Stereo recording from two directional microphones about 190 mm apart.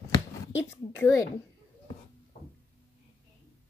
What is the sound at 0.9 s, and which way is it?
Speech, 15° left (ahead or behind).